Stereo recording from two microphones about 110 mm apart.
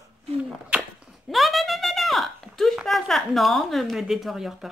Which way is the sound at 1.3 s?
Centre (ahead or behind).